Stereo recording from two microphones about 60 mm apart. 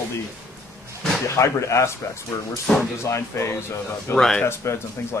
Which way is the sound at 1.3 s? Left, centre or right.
Left.